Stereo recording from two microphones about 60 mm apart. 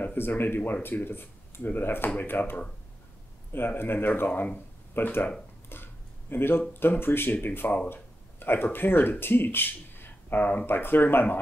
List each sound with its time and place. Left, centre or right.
0.0 s speech: left
3.5 s speech: left
5.7 s a sound: left
6.7 s speech: left